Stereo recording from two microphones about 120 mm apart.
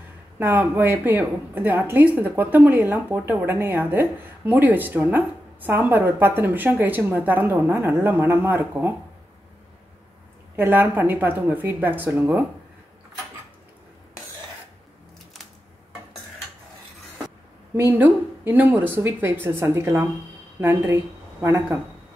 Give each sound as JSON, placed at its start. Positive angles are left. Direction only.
{"t": 0.4, "sound": "a woman's voice", "side_deg": -15}
{"t": 10.5, "sound": "a woman's voice", "side_deg": -15}
{"t": 17.7, "sound": "a woman's voice", "side_deg": -15}